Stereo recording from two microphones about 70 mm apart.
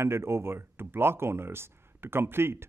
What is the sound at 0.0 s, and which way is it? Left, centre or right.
A man's voice, right.